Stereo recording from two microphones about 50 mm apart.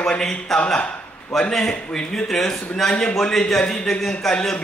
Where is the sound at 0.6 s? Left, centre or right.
Left.